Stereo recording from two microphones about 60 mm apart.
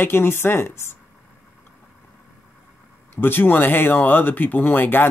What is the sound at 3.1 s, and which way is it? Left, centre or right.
Speech, left.